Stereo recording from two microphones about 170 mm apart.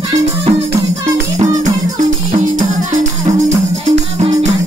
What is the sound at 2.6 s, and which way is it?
Music, 50° right (ahead or behind).